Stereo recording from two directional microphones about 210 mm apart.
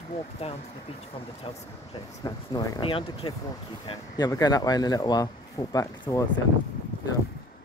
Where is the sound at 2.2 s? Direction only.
20° left (ahead or behind).